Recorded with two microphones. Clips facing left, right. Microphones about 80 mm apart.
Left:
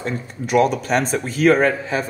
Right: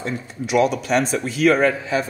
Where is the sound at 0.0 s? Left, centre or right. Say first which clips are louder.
Left 1 dB; left.